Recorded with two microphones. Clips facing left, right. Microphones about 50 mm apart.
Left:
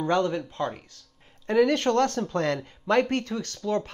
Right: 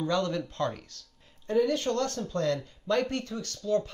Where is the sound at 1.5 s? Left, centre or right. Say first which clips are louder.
Left 5 dB; left.